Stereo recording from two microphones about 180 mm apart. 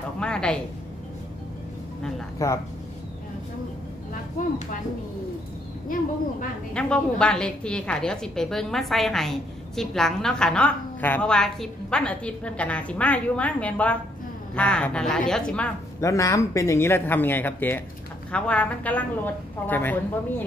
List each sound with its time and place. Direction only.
0.2 s a woman's voice: 5° left (ahead or behind)
2.3 s speech: 15° left (ahead or behind)
6.7 s a woman's voice: 5° left (ahead or behind)
16.0 s a woman's voice: 15° left (ahead or behind)